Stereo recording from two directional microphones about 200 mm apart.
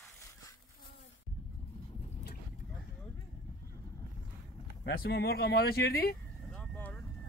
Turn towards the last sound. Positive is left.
turn(degrees=10)  # may be behind; listen again after turning